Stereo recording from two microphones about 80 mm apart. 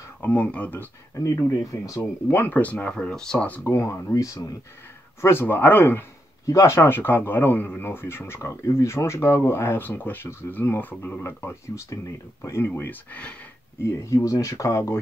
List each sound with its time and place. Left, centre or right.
0.2 s speech: centre
1.2 s speech: left
2.0 s speech: left
3.6 s speech: left
5.2 s speech: left
6.4 s speech: left
11.2 s speech: left
13.1 s speech: centre
13.8 s speech: left